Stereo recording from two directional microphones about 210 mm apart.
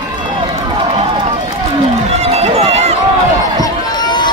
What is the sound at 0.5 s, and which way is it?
Run, 25° right (ahead or behind).